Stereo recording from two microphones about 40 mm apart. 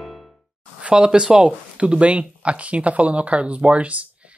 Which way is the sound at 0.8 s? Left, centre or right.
Right.